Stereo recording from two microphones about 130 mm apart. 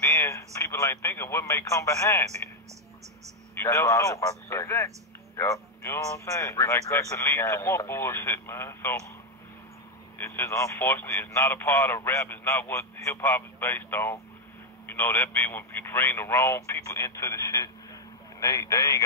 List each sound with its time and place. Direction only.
0.0 s speech: 20° left (ahead or behind)
3.5 s a man's voice: 20° left (ahead or behind)
10.1 s a man's voice: 20° left (ahead or behind)